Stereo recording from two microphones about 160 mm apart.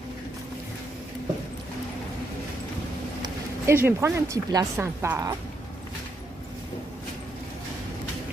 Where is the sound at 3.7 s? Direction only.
15° right (ahead or behind).